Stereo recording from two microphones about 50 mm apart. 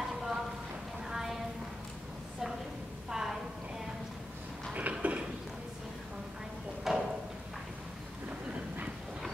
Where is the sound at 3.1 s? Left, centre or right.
Centre.